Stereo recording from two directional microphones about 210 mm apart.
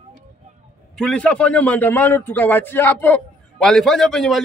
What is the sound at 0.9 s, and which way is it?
A man's voice, 5° left (ahead or behind).